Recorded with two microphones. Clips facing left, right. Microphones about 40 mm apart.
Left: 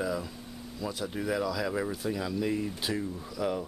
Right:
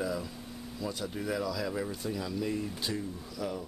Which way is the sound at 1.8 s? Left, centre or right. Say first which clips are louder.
Left 3 dB; centre.